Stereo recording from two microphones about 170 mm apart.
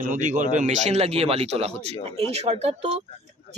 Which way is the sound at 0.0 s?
50° right (ahead or behind).